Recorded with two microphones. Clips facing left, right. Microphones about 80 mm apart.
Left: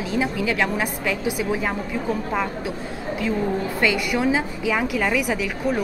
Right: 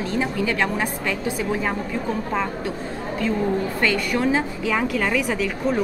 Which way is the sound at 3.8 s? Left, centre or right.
Centre.